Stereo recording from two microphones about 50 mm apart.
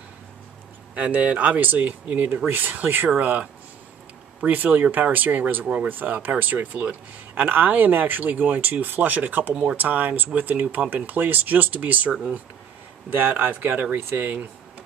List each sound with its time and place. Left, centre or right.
0.9 s speech: right
4.5 s speech: right
9.5 s speech: centre
9.8 s speech: right
13.1 s speech: right